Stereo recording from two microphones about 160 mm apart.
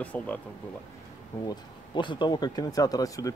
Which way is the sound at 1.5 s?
30° left (ahead or behind).